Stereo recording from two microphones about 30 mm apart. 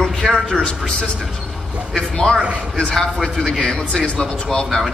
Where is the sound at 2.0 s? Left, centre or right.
Centre.